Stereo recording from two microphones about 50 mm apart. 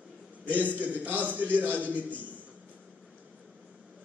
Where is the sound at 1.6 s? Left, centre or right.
Left.